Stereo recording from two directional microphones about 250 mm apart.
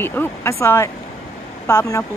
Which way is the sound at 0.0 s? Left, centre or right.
Centre.